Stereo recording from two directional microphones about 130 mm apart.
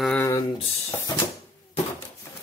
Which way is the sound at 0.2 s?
20° left (ahead or behind).